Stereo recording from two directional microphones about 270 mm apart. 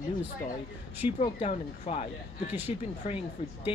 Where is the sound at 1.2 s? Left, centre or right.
Centre.